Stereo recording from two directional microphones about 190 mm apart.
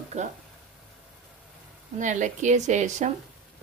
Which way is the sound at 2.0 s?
40° right (ahead or behind).